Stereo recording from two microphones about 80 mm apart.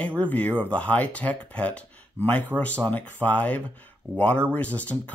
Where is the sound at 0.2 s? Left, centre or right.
Centre.